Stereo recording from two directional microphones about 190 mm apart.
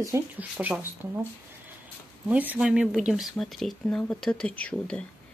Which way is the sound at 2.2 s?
5° right (ahead or behind).